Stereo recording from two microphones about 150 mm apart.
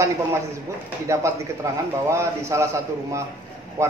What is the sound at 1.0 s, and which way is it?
A man's voice, 20° right (ahead or behind).